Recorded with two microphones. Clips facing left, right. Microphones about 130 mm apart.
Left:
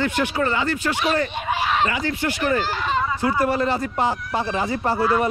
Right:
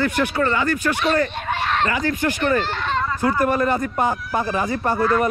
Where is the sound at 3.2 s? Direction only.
20° left (ahead or behind).